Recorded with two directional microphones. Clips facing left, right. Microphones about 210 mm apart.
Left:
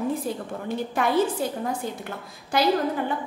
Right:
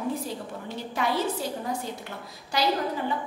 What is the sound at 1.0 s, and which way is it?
Speech, 55° left (ahead or behind).